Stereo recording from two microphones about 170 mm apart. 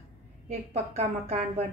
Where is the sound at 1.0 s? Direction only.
40° right (ahead or behind).